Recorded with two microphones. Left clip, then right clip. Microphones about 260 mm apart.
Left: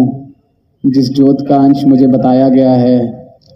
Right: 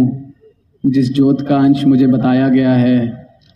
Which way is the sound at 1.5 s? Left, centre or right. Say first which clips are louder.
Left 4 dB; right.